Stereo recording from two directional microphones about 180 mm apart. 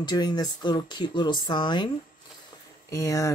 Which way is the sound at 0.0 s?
25° left (ahead or behind).